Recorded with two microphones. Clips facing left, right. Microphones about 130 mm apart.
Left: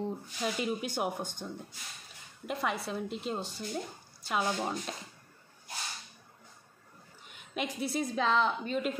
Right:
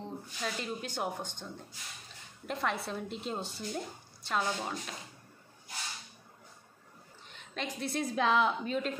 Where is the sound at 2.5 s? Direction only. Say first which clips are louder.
Left 1 dB; 5° left (ahead or behind).